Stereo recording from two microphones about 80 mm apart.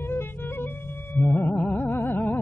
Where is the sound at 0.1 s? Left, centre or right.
Left.